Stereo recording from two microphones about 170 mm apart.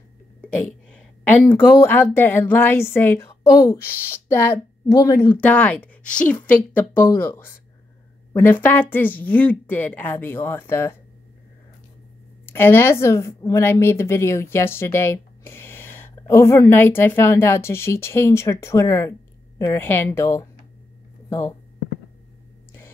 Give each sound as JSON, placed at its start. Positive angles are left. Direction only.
{"t": 0.4, "sound": "a woman's voice", "side_deg": 5}
{"t": 12.4, "sound": "a woman's voice", "side_deg": 15}